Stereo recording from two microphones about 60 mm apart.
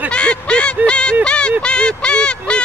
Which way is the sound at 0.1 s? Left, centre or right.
Centre.